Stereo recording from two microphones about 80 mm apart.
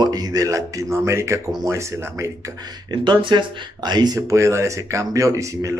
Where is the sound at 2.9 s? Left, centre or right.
Right.